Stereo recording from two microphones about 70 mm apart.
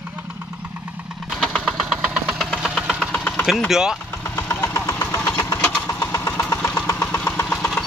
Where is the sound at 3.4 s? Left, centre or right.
Centre.